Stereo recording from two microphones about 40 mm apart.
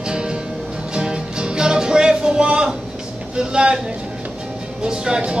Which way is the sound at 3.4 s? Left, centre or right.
Centre.